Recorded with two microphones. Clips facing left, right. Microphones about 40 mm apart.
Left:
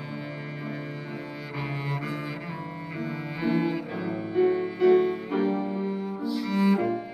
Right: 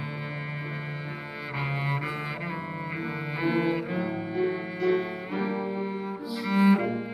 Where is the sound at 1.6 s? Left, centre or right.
Centre.